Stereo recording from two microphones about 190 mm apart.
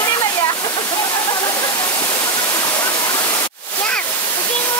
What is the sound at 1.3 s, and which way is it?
Waterfall, 25° left (ahead or behind).